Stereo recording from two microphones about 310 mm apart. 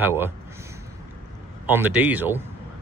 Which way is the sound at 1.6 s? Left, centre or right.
Centre.